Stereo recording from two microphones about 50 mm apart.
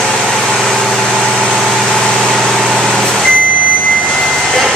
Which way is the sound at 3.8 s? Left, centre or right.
Left.